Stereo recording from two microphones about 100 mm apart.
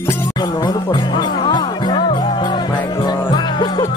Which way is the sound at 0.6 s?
45° left (ahead or behind).